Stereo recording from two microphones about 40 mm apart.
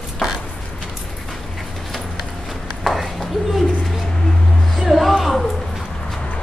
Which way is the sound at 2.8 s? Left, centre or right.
Centre.